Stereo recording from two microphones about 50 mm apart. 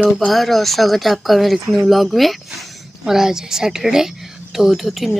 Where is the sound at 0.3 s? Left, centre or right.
Centre.